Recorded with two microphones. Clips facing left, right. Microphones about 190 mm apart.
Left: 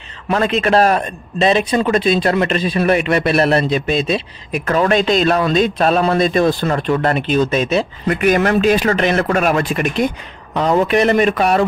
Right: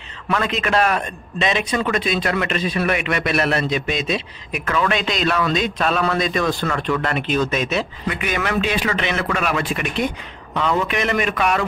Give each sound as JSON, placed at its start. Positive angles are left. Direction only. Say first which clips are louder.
{"t": 0.3, "sound": "a man's voice", "louder": "left 6 dB", "side_deg": 35}
{"t": 8.1, "sound": "a man's voice", "louder": "left 10 dB", "side_deg": 45}